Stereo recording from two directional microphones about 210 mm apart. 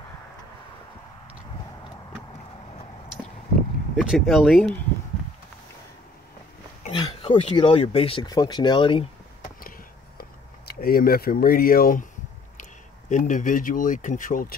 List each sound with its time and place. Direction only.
3.9 s speech: 5° right (ahead or behind)
6.9 s speech: 25° left (ahead or behind)
9.6 s a sound: 45° left (ahead or behind)
10.7 s speech: 45° left (ahead or behind)
13.1 s speech: 35° left (ahead or behind)